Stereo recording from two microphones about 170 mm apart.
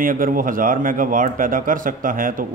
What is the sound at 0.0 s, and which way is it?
Speech, 55° right (ahead or behind).